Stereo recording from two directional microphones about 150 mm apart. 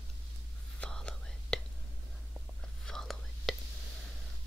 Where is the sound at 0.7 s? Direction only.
5° left (ahead or behind).